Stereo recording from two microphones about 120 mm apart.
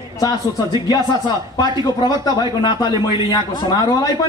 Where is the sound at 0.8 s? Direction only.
35° left (ahead or behind).